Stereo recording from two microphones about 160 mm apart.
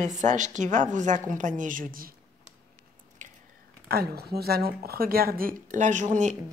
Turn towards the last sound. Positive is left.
turn(degrees=-50)  # may be behind; listen again after turning